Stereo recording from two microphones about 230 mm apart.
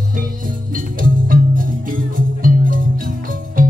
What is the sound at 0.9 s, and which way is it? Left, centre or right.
Music, right.